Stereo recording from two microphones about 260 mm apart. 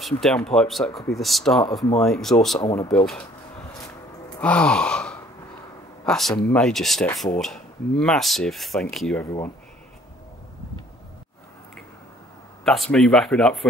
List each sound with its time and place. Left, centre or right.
0.2 s speech: centre
2.7 s speech: centre
4.4 s speech: centre
12.6 s speech: centre